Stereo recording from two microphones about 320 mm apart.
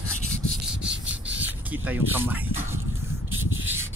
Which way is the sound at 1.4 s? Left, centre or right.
Centre.